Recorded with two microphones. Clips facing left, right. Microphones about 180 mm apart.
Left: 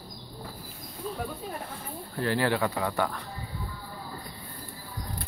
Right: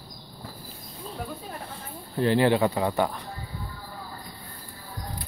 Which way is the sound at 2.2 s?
20° right (ahead or behind).